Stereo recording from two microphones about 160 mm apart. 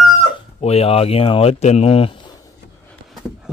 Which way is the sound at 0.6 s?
40° left (ahead or behind).